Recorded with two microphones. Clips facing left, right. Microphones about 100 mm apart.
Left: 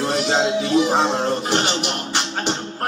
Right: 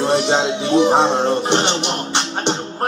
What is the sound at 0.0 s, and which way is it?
Music, 25° right (ahead or behind).